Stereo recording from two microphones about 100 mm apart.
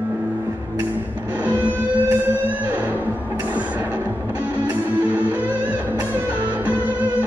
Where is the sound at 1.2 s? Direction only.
15° right (ahead or behind).